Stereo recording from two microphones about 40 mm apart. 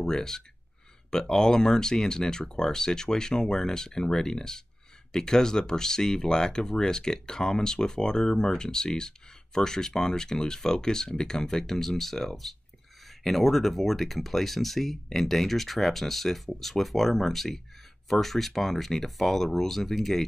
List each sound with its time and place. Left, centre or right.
0.0 s speech: centre